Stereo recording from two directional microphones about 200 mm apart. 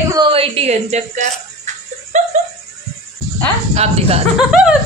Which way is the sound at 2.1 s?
40° right (ahead or behind).